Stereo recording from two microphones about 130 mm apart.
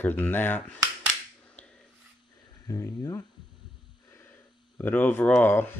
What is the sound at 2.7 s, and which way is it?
Speech, 25° left (ahead or behind).